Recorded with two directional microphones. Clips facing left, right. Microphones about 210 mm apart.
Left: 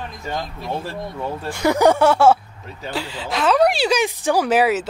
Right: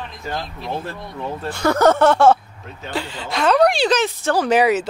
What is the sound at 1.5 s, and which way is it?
A woman's voice, 15° left (ahead or behind).